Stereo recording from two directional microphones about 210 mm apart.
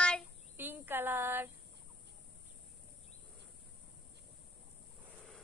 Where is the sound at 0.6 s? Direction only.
10° right (ahead or behind).